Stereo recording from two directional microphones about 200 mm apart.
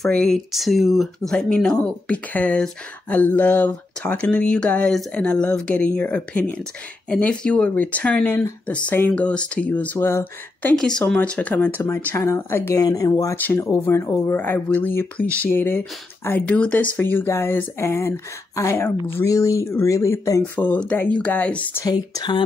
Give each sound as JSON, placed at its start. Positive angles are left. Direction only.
{"t": 0.0, "sound": "speech", "side_deg": 5}
{"t": 21.8, "sound": "speech", "side_deg": 20}